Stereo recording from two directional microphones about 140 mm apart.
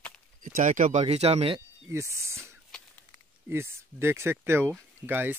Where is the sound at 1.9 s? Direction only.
20° right (ahead or behind).